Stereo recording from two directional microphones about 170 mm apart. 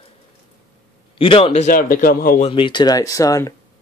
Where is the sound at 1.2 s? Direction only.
35° left (ahead or behind); by 2.4 s 55° left (ahead or behind).